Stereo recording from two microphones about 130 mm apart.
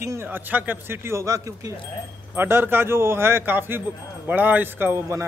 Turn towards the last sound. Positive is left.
turn(degrees=-20)  # may be behind; listen again after turning